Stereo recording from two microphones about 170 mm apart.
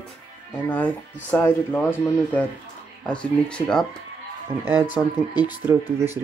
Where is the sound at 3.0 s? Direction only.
5° left (ahead or behind).